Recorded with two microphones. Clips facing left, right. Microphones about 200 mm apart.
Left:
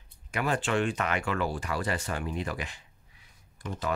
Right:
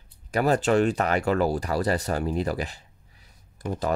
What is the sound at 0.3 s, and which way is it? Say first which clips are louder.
Speech: right 7 dB; 40° right (ahead or behind).